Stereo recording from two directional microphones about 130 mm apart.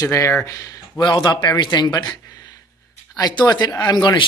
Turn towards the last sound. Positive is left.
turn(degrees=35)  # may be behind; listen again after turning